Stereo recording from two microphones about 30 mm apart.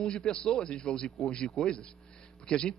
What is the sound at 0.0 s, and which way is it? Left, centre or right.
A man's voice, left.